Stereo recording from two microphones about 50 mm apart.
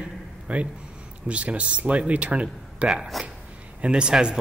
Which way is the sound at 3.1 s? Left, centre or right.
Centre.